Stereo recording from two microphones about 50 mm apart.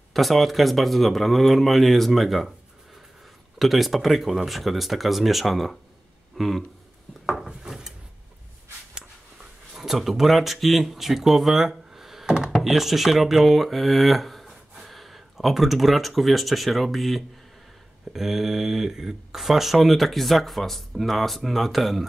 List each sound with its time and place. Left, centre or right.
0.1 s speech: centre
3.5 s speech: centre
6.3 s a sound: centre
7.2 s wood: centre
9.8 s speech: centre
12.3 s a sound: centre
12.5 s speech: centre